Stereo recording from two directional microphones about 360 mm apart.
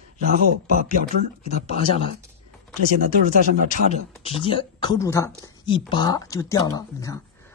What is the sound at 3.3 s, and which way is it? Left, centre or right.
Speech, right.